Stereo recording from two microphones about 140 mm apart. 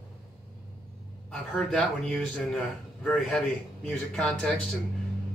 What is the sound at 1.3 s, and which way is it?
Speech, 5° left (ahead or behind).